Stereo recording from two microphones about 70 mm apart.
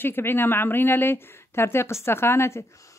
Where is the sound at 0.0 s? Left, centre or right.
Left.